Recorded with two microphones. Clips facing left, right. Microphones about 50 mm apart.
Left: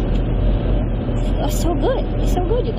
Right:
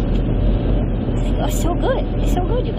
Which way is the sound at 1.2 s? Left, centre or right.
Centre.